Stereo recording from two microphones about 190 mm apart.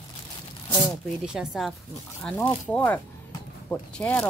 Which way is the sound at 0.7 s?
5° right (ahead or behind).